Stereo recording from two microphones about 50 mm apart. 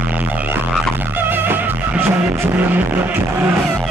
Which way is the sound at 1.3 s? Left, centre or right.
Right.